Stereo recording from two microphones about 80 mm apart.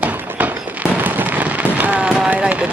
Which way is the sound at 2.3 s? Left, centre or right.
Centre.